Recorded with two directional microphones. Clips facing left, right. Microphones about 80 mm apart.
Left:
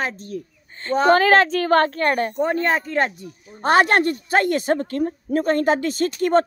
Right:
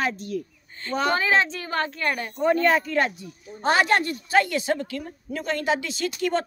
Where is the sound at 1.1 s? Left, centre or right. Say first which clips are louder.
Left 7 dB; left.